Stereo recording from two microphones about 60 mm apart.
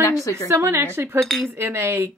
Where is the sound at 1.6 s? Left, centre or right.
Right.